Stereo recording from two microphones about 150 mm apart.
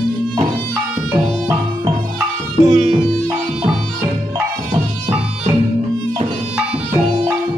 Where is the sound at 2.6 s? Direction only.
50° right (ahead or behind).